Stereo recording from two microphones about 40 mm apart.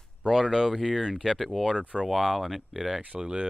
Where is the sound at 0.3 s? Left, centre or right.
Centre.